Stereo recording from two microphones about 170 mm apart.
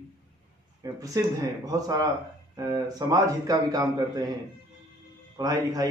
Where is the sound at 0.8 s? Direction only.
20° right (ahead or behind).